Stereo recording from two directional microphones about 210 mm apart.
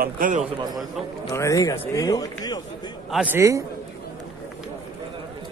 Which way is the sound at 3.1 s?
10° right (ahead or behind).